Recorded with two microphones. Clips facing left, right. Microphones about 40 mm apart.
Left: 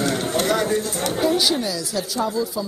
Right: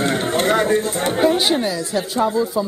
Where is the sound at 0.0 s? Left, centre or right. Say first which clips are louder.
Right 3 dB; right.